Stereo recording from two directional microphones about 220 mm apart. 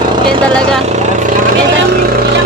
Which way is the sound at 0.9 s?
35° right (ahead or behind).